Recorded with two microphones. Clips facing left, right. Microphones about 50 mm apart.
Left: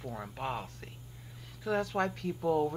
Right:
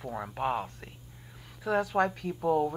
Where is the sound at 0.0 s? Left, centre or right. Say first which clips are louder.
Right 6 dB; centre.